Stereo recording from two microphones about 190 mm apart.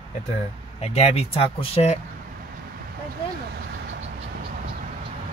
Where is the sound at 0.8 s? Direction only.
35° left (ahead or behind).